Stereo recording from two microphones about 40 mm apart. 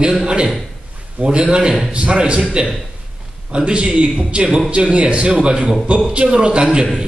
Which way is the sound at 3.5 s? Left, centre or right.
Right.